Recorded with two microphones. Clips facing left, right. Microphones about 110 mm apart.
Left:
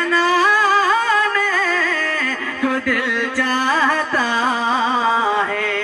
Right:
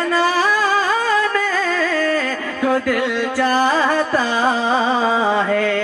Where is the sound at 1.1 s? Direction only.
35° right (ahead or behind).